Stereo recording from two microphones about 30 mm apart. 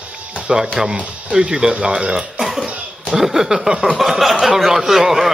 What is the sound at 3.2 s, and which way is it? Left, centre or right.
A man's voice, centre.